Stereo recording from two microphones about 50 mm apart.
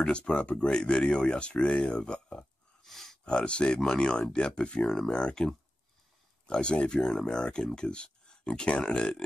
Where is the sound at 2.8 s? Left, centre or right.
Centre.